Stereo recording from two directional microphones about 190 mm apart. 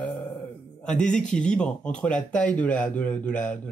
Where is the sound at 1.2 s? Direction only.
5° left (ahead or behind).